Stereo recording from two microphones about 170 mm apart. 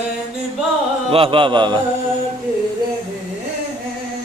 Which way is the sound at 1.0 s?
35° right (ahead or behind).